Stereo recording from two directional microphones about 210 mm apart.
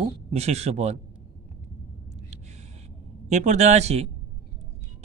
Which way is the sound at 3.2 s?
35° right (ahead or behind).